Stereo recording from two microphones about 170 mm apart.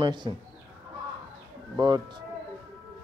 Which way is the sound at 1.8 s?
25° right (ahead or behind).